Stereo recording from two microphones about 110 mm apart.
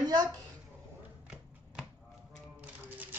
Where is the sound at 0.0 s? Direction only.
40° right (ahead or behind).